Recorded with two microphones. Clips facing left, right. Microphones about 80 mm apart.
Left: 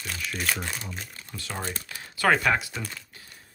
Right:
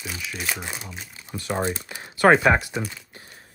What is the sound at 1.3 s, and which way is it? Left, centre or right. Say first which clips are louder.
Speech: right 9 dB; right.